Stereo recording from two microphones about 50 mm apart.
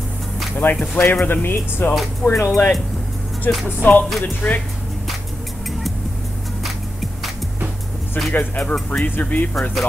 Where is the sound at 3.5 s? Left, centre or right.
Left.